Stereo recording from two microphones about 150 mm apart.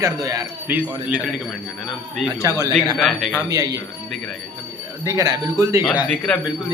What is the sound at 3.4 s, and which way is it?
Speech, 25° right (ahead or behind).